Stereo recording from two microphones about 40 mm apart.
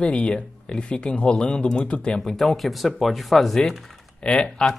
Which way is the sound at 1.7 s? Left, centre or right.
Left.